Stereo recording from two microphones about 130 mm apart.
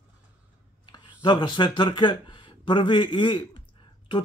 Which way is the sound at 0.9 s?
35° left (ahead or behind).